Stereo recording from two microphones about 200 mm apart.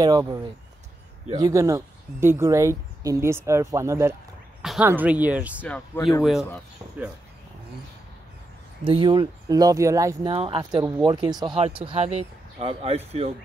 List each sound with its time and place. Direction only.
0.0 s speech: 20° right (ahead or behind)
5.6 s speech: 10° left (ahead or behind)
8.8 s speech: 25° right (ahead or behind)
10.3 s speech: 25° right (ahead or behind)